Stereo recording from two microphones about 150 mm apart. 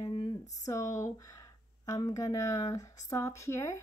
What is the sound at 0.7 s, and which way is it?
A woman's voice, 20° left (ahead or behind).